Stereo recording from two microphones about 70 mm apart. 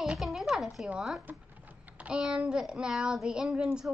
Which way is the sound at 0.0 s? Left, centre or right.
Centre.